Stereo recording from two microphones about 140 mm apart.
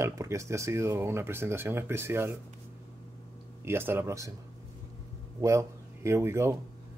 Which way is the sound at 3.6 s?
15° right (ahead or behind).